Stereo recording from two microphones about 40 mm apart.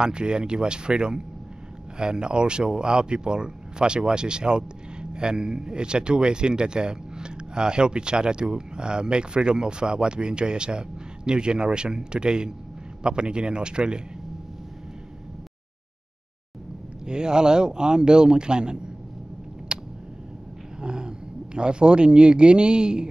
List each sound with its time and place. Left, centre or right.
0.0 s speech: right
17.0 s speech: centre
19.7 s a sound: right
21.5 s speech: right